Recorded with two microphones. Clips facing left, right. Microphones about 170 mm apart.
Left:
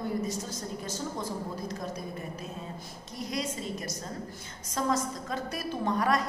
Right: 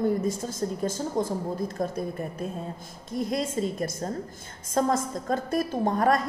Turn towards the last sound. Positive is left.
turn(degrees=-50)  # may be behind; listen again after turning